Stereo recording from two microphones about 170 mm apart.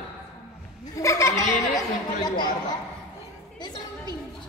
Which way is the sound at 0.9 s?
15° left (ahead or behind).